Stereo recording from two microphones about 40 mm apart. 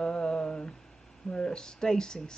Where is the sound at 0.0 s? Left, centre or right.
Centre.